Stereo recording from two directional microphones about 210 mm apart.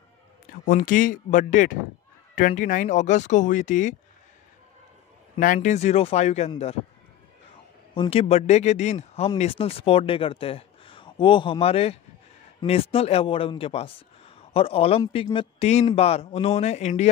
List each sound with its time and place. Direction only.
0.7 s a man's voice: 40° left (ahead or behind)
5.4 s a man's voice: 40° left (ahead or behind)
7.9 s a man's voice: 25° left (ahead or behind)